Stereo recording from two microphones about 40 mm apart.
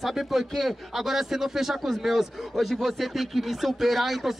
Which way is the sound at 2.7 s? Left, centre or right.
Centre.